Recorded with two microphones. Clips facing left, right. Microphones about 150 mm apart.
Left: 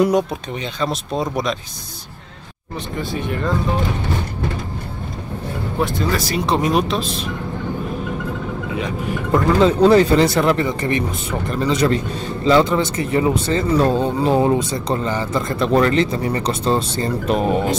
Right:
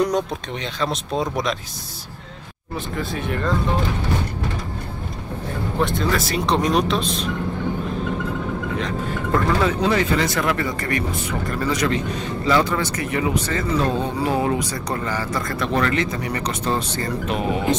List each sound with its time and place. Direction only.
0.0 s speech: 5° left (ahead or behind)
3.0 s speech: centre (ahead or behind)
5.8 s speech: centre (ahead or behind)
8.7 s speech: 10° left (ahead or behind)
9.8 s speech: 35° left (ahead or behind)